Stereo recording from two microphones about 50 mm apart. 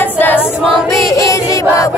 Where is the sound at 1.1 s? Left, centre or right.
Left.